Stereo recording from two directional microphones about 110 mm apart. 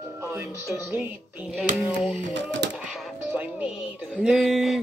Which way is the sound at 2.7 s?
5° right (ahead or behind).